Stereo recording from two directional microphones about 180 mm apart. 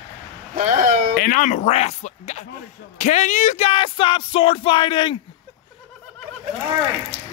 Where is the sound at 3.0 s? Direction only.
40° left (ahead or behind).